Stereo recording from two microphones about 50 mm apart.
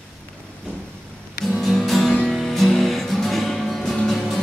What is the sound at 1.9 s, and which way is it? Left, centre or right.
Music, centre.